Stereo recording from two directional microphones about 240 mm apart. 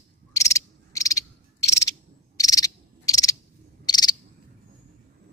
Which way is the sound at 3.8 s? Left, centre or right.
Centre.